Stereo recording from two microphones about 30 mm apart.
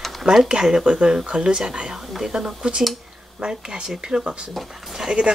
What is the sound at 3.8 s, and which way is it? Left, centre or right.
Speech, right.